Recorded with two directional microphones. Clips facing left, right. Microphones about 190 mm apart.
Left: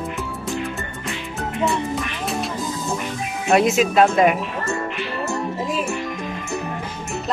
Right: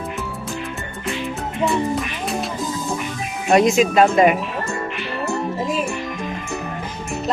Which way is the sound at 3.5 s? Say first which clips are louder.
Right 2 dB; 5° left (ahead or behind).